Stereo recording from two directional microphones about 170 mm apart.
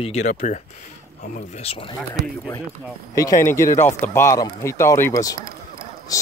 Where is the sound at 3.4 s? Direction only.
15° left (ahead or behind).